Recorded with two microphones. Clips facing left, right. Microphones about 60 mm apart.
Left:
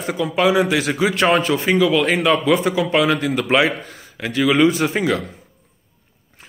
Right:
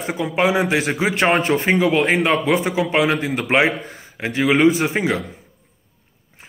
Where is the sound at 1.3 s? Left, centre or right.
Right.